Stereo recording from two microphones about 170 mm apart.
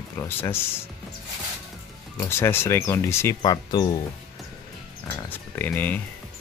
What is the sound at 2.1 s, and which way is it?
Speech, 15° left (ahead or behind).